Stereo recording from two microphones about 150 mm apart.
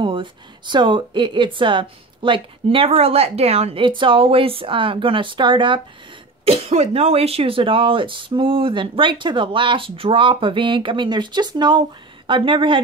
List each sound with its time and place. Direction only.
0.0 s a woman's voice: 35° right (ahead or behind)
6.4 s a woman's voice: 40° right (ahead or behind)